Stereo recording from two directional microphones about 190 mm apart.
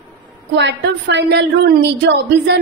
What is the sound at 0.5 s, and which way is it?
A woman's voice, 70° right (ahead or behind).